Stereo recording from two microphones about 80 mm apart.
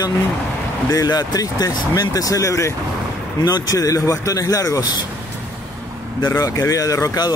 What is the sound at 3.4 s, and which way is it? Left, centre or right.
Speech, left.